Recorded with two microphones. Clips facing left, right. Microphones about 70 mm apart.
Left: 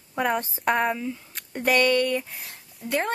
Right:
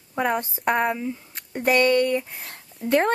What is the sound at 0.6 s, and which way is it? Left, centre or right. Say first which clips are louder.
Speech: right 1 dB; centre.